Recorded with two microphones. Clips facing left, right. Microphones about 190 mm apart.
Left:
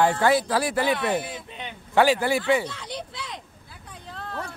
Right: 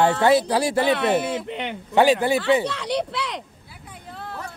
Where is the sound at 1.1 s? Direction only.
70° right (ahead or behind).